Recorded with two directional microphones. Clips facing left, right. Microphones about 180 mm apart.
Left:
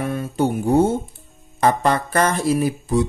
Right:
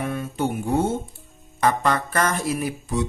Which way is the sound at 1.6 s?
30° left (ahead or behind).